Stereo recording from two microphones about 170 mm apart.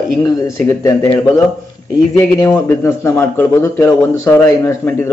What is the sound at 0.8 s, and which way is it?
Speech, 15° left (ahead or behind).